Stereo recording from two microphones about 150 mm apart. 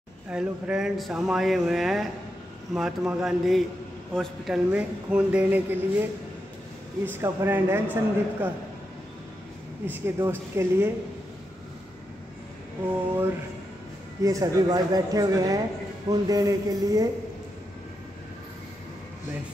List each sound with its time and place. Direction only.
0.3 s speech: 5° right (ahead or behind)
4.7 s a man's voice: 10° right (ahead or behind)
7.1 s a man's voice: 15° right (ahead or behind)
9.8 s a man's voice: 15° right (ahead or behind)
14.2 s speech: 25° right (ahead or behind)